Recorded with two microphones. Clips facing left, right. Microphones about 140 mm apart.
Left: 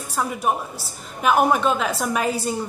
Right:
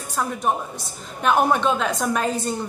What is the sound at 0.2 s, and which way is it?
A woman's voice, 5° left (ahead or behind).